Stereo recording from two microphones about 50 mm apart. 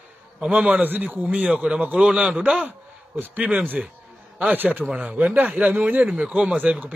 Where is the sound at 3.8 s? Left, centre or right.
Centre.